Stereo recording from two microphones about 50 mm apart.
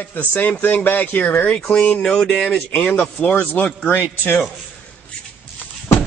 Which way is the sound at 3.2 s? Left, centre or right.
Left.